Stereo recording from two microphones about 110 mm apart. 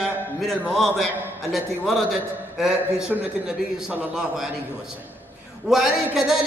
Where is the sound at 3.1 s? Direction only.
15° right (ahead or behind).